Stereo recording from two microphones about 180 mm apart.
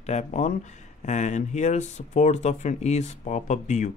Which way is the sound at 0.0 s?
40° left (ahead or behind).